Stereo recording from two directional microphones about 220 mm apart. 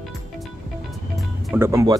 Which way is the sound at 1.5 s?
10° right (ahead or behind).